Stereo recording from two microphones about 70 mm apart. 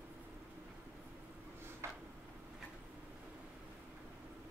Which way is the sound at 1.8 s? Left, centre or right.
Right.